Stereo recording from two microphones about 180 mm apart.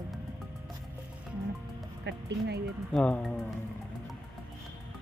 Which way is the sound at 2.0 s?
70° right (ahead or behind).